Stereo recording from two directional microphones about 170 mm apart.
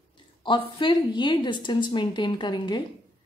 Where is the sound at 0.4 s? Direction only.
30° left (ahead or behind).